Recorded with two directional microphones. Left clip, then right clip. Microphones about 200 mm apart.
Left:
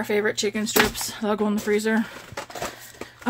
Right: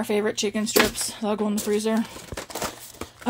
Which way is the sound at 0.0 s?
5° right (ahead or behind).